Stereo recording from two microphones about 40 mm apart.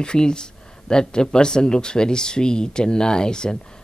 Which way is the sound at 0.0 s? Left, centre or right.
Left.